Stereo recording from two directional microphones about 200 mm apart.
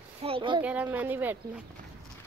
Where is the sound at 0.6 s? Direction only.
10° right (ahead or behind).